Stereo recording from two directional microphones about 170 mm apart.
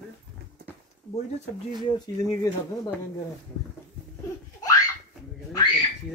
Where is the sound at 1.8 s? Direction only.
20° left (ahead or behind).